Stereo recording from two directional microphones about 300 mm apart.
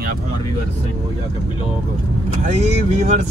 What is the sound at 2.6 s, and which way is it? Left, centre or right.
Speech, right.